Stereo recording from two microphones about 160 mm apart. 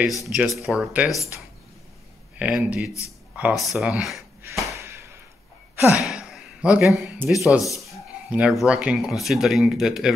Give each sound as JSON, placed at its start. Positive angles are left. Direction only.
{"t": 0.3, "sound": "speech", "side_deg": 0}
{"t": 1.1, "sound": "speech", "side_deg": 20}
{"t": 2.3, "sound": "speech", "side_deg": -10}
{"t": 4.7, "sound": "a sound", "side_deg": -15}
{"t": 5.8, "sound": "gasp", "side_deg": -5}
{"t": 7.4, "sound": "speech", "side_deg": -5}